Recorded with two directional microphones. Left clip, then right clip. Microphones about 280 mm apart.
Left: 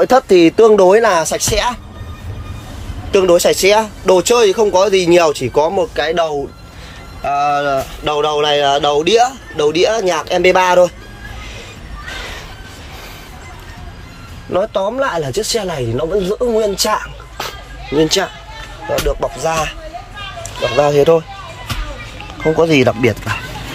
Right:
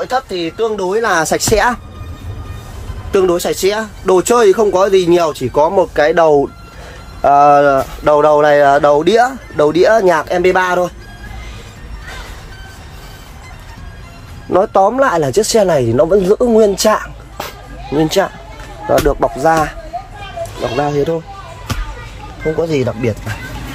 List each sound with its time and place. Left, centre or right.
0.7 s speech: centre
1.2 s speech: centre
3.1 s speech: centre
14.5 s speech: centre
18.9 s speech: right
20.7 s speech: centre
22.6 s speech: centre